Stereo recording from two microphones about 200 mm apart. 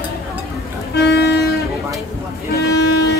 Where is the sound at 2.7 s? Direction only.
55° left (ahead or behind).